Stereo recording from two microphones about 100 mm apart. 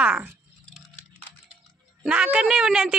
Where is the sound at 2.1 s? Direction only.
10° right (ahead or behind).